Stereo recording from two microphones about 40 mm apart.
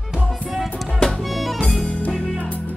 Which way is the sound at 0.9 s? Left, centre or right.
Centre.